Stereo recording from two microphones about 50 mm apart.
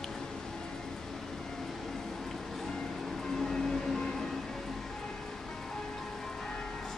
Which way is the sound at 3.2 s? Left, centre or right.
Centre.